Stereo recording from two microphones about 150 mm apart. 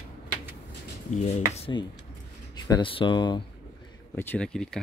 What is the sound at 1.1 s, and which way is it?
Speech, 55° left (ahead or behind).